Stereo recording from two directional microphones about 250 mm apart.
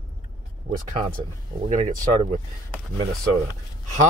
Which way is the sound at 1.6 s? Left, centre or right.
Right.